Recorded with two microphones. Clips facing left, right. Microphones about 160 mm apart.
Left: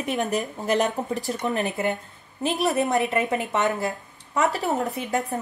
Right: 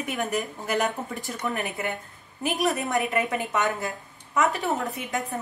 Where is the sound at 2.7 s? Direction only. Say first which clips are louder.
Left 3 dB; 20° left (ahead or behind).